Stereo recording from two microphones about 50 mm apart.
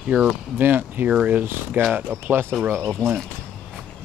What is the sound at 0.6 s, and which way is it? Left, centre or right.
Speech, right.